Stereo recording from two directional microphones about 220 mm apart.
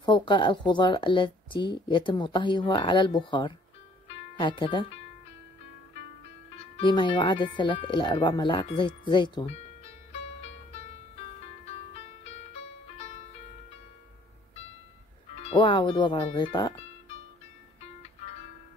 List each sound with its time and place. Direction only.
0.0 s speech: 20° left (ahead or behind)
6.5 s speech: 25° left (ahead or behind)
10.7 s music: 30° left (ahead or behind)
15.3 s speech: 25° left (ahead or behind)